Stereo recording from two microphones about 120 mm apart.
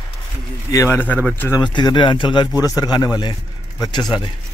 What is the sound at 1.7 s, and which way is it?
Speech, 40° left (ahead or behind).